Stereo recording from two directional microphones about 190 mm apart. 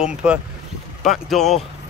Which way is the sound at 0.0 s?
5° right (ahead or behind).